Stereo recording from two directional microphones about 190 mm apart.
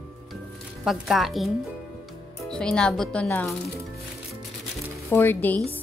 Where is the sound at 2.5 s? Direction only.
5° left (ahead or behind).